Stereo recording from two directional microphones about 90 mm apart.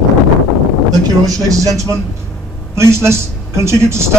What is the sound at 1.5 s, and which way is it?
Speech, 40° right (ahead or behind).